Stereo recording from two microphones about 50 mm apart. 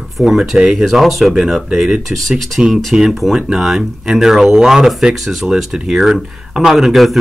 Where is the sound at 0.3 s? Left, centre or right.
Centre.